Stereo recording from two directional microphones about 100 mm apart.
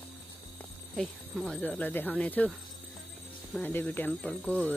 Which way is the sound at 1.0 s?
5° left (ahead or behind).